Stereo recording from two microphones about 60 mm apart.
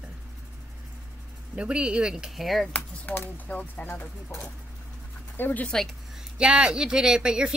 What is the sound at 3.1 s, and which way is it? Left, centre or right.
Speech, left.